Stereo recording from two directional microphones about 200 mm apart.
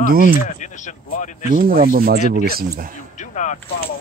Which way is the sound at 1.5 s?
45° right (ahead or behind).